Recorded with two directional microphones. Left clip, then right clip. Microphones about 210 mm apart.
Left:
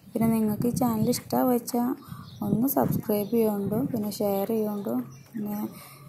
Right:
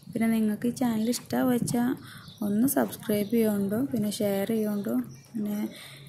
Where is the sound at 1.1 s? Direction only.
20° right (ahead or behind).